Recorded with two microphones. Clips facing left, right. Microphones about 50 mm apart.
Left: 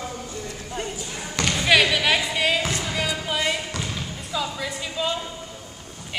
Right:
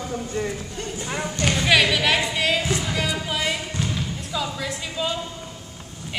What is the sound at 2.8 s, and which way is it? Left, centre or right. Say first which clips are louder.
Music: right 1 dB; centre.